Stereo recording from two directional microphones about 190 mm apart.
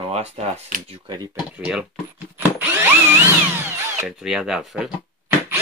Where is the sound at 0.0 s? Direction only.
35° right (ahead or behind).